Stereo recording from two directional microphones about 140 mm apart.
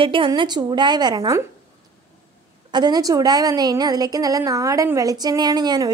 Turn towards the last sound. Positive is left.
turn(degrees=-30)  # may be behind; listen again after turning